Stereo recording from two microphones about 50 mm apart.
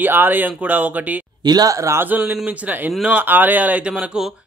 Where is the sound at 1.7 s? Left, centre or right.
Right.